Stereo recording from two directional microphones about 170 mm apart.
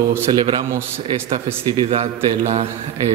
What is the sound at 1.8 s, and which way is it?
A man's voice, 40° right (ahead or behind).